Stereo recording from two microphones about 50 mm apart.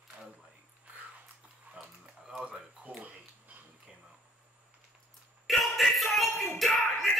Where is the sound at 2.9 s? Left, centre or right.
Right.